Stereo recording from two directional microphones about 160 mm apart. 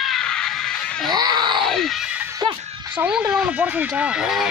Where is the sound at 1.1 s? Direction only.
25° right (ahead or behind).